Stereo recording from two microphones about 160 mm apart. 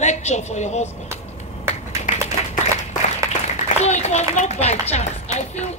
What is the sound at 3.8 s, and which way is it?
Speech, 45° left (ahead or behind).